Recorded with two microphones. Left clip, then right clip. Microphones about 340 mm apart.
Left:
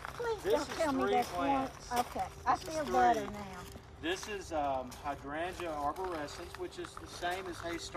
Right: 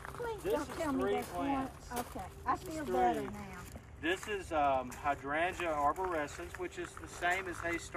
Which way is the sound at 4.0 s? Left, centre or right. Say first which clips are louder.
Right 2 dB; centre.